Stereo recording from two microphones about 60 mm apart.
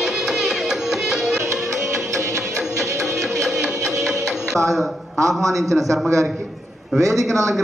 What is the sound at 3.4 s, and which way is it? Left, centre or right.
Music, centre.